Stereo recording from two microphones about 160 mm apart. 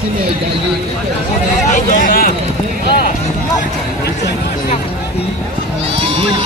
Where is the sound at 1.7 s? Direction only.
55° left (ahead or behind).